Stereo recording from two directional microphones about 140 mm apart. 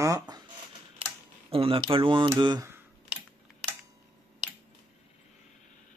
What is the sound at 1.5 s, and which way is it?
Speech, 40° right (ahead or behind).